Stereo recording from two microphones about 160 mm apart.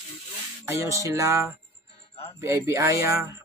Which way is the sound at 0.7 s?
15° right (ahead or behind).